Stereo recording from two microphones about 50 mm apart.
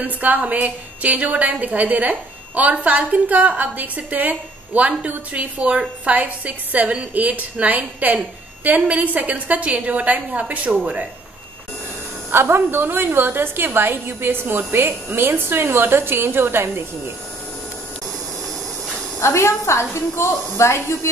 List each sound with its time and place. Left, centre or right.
0.0 s a woman's voice: right
12.3 s a woman's voice: right
19.1 s a woman's voice: left